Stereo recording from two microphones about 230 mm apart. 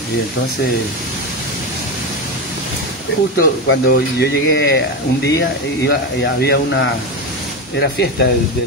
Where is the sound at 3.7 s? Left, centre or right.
Left.